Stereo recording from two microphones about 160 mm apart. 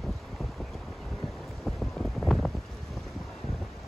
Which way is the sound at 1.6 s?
Centre (ahead or behind).